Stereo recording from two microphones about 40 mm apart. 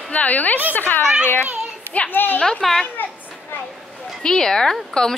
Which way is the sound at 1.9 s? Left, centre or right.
Left.